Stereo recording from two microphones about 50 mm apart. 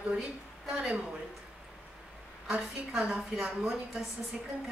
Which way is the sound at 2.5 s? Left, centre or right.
Centre.